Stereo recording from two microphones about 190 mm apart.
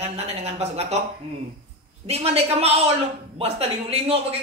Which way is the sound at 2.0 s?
35° right (ahead or behind).